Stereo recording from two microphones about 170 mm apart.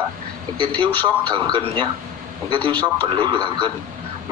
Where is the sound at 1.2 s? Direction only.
30° right (ahead or behind).